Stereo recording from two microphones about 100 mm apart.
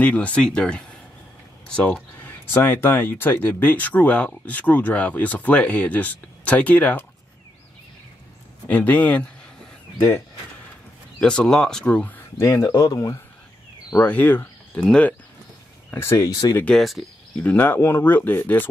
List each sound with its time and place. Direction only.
0.0 s speech: 15° left (ahead or behind)
8.6 s speech: 15° left (ahead or behind)
11.1 s speech: 10° left (ahead or behind)
12.4 s speech: 30° left (ahead or behind)
14.0 s speech: 20° left (ahead or behind)
15.9 s speech: 25° left (ahead or behind)
16.6 s speech: 5° left (ahead or behind)
17.4 s speech: 15° left (ahead or behind)